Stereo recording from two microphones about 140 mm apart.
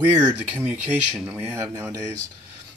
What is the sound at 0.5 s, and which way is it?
Speech, 10° right (ahead or behind).